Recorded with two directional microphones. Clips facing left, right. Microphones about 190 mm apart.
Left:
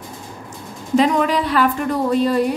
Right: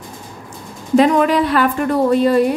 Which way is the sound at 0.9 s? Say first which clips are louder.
Right 4 dB; 55° right (ahead or behind).